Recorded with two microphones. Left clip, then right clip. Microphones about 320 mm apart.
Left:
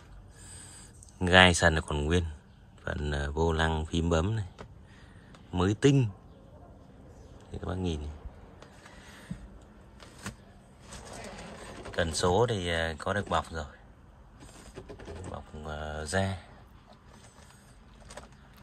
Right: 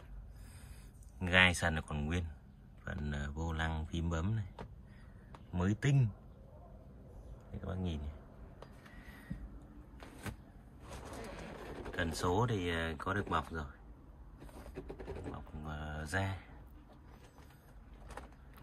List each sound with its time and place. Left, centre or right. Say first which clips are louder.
1.2 s speech: left 8 dB; centre
5.5 s speech: left 12 dB; centre
7.6 s speech: left 9 dB; centre
11.9 s speech: left 8 dB; centre
15.6 s speech: left 8 dB; centre